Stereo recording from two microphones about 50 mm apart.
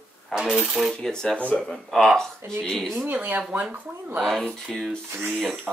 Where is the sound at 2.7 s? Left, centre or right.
Centre.